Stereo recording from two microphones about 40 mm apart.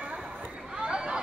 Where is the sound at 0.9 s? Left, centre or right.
Centre.